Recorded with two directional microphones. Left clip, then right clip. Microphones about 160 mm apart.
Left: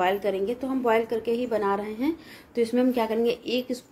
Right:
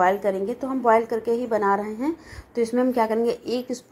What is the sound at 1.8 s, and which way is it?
Speech, 5° left (ahead or behind).